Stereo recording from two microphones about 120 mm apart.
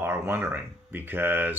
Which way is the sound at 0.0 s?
20° right (ahead or behind).